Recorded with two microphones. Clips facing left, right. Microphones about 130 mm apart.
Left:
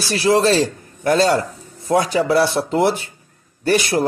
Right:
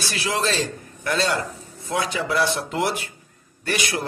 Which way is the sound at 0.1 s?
35° left (ahead or behind).